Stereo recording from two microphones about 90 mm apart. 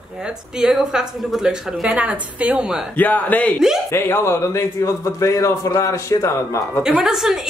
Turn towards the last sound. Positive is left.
turn(degrees=-5)  # may be behind; listen again after turning